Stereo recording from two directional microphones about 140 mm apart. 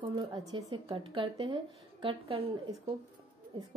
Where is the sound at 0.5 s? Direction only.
40° right (ahead or behind).